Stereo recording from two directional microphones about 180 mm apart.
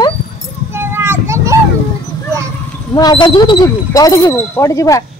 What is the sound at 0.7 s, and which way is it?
Children playing, 15° right (ahead or behind).